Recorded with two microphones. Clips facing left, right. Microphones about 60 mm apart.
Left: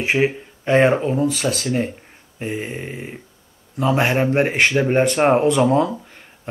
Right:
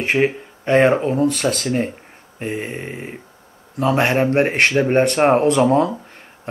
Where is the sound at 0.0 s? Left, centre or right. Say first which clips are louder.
Right 1 dB; centre.